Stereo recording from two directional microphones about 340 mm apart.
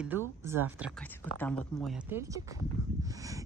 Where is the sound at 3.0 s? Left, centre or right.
Centre.